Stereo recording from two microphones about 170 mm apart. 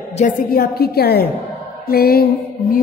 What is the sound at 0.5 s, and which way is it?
A woman's voice, 65° left (ahead or behind).